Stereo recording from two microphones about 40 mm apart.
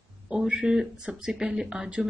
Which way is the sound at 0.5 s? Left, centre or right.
Right.